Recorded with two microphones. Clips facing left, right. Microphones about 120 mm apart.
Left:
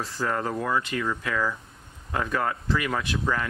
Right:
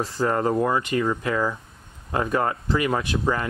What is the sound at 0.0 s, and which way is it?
Speech, 25° right (ahead or behind).